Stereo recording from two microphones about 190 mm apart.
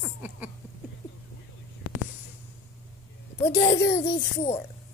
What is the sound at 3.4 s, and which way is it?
Speech, 15° left (ahead or behind).